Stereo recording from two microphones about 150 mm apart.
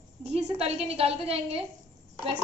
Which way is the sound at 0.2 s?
45° right (ahead or behind).